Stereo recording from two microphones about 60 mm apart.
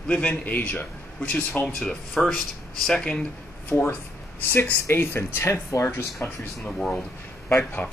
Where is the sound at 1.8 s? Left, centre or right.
Centre.